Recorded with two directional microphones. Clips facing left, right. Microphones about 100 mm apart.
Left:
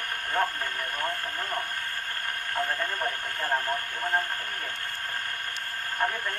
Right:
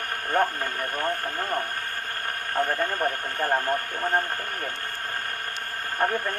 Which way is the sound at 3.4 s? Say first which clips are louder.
Right 4 dB; 35° right (ahead or behind).